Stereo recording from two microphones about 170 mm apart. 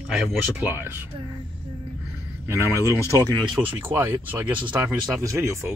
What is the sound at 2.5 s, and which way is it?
Speech, 15° right (ahead or behind).